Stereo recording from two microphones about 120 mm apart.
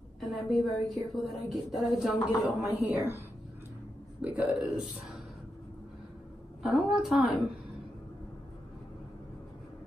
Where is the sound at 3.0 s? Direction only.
20° right (ahead or behind).